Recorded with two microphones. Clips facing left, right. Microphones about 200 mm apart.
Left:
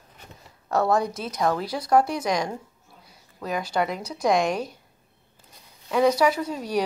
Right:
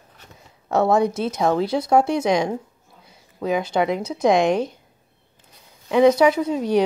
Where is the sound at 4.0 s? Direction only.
25° right (ahead or behind).